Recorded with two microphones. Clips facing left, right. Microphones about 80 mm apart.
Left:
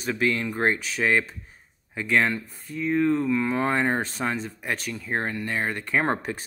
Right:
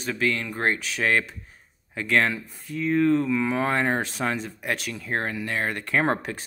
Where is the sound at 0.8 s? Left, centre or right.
Centre.